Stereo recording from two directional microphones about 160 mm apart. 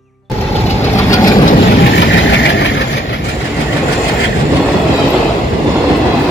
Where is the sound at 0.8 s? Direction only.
20° left (ahead or behind).